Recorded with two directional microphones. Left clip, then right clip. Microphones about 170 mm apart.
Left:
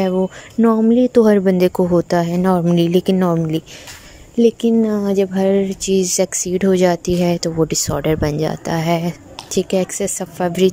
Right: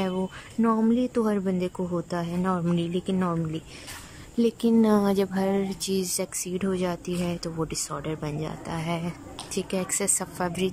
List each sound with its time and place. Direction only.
0.0 s speech: 20° left (ahead or behind)
4.4 s speech: 15° left (ahead or behind)
4.8 s speech: 5° left (ahead or behind); by 10.7 s 20° left (ahead or behind)